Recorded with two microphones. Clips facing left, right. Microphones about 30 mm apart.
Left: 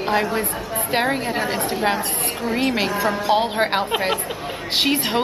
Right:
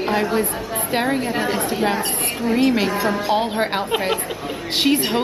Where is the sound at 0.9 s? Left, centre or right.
Centre.